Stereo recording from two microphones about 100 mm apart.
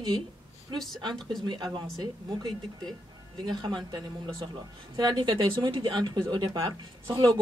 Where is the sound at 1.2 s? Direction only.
5° left (ahead or behind).